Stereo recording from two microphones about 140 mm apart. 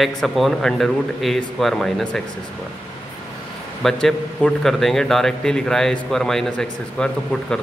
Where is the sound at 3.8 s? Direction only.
5° left (ahead or behind).